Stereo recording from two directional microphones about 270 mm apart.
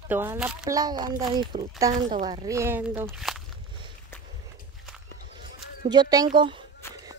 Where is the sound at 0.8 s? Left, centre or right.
Centre.